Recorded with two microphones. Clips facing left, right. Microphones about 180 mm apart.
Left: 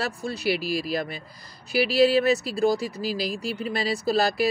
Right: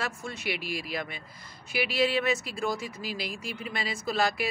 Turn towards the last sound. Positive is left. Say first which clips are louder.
# left 6 dB
turn(degrees=35)  # may be behind; listen again after turning